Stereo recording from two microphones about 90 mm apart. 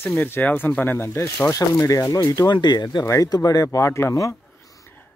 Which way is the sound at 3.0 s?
40° left (ahead or behind).